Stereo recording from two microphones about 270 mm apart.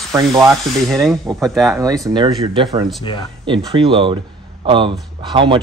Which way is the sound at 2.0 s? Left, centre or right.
Centre.